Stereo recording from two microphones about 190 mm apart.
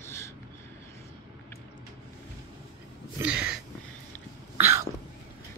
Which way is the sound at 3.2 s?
5° right (ahead or behind).